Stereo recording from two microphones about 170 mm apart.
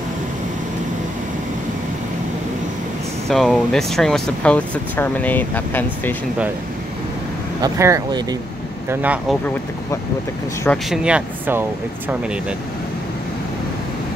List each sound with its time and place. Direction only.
3.3 s speech: centre (ahead or behind)
7.6 s speech: 20° right (ahead or behind)
10.9 s speech: 5° right (ahead or behind)